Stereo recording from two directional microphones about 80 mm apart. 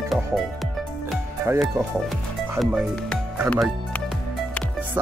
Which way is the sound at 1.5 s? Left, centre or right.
Right.